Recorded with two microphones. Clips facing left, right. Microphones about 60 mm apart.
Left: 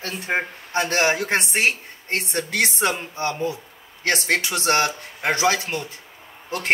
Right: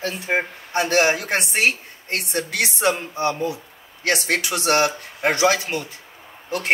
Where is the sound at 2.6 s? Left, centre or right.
Left.